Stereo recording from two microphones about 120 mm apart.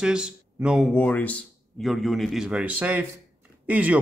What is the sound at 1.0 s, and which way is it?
Speech, 10° left (ahead or behind).